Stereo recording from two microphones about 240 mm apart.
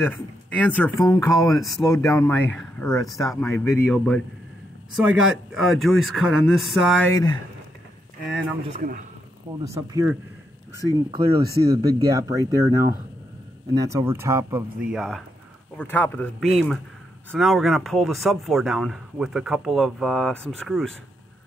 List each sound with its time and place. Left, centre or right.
0.0 s speech: centre
5.2 s speech: centre
8.3 s speech: centre
8.7 s speech: right
9.7 s speech: centre